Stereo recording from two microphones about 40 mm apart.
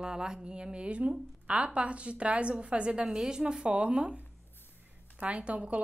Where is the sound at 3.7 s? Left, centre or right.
Right.